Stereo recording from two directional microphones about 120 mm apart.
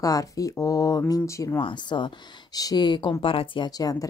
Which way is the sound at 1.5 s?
40° left (ahead or behind).